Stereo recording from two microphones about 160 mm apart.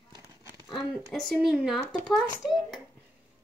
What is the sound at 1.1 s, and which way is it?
A woman's voice, centre (ahead or behind).